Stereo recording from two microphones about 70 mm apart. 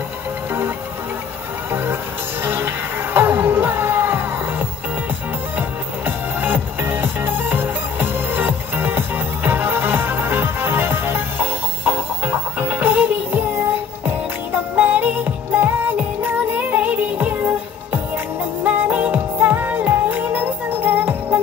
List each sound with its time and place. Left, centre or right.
1.7 s music: right
18.6 s music: right